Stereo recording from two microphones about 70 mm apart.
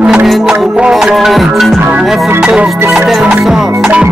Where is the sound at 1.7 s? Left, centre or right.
Right.